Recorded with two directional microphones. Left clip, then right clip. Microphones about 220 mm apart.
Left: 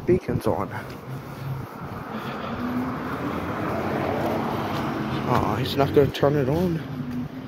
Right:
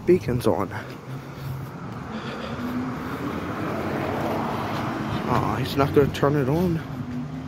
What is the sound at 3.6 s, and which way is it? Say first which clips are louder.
Vehicle: left 2 dB; 5° right (ahead or behind).